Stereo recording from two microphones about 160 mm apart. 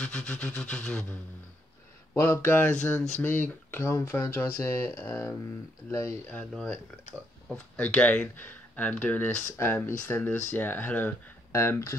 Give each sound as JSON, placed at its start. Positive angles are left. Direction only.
{"t": 0.0, "sound": "speech", "side_deg": 5}
{"t": 2.1, "sound": "speech", "side_deg": 15}
{"t": 6.5, "sound": "speech", "side_deg": 5}